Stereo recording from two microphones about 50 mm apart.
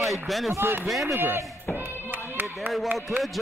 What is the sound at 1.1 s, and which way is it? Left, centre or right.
Speech, right.